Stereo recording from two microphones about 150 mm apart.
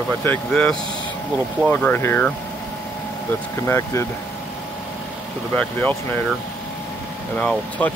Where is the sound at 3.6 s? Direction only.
15° left (ahead or behind).